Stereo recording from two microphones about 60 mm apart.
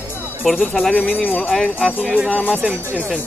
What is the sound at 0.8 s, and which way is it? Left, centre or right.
Speech, centre.